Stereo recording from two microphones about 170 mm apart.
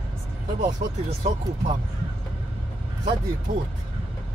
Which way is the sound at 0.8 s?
55° right (ahead or behind).